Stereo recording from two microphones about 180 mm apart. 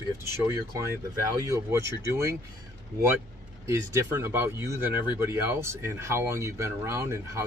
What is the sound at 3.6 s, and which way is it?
Speech, 15° right (ahead or behind).